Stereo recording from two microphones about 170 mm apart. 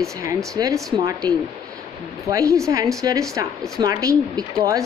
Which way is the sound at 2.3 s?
20° right (ahead or behind).